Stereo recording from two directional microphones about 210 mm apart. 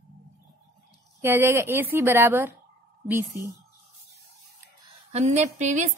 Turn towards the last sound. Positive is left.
turn(degrees=-35)  # may be behind; listen again after turning